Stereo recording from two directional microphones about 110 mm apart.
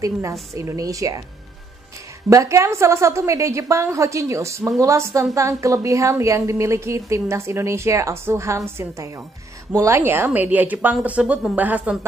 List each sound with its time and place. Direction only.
0.0 s a woman's voice: 30° right (ahead or behind)
2.2 s a woman's voice: 25° right (ahead or behind)